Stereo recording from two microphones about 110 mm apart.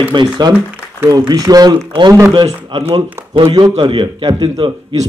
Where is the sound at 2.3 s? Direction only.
45° right (ahead or behind).